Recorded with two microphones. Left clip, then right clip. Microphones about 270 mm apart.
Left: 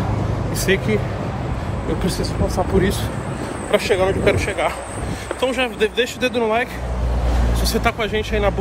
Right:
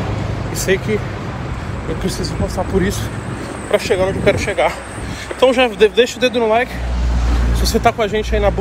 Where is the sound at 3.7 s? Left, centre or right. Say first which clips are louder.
Right 2 dB; centre.